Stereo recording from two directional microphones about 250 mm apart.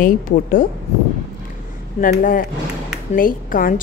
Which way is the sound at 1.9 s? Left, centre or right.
Left.